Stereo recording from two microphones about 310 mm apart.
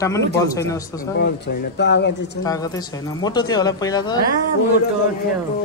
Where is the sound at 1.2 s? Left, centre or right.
Left.